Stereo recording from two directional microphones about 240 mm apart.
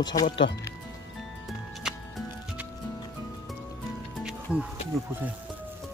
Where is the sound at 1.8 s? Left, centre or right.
Centre.